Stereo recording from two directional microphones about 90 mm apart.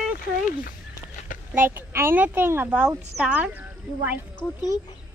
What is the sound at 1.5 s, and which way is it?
A child's voice, 25° right (ahead or behind).